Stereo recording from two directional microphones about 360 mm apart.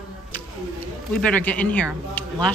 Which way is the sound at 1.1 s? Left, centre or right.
Centre.